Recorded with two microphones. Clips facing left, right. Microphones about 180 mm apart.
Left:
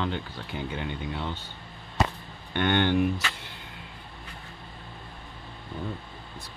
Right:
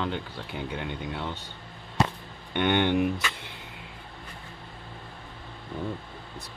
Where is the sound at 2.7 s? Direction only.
15° right (ahead or behind).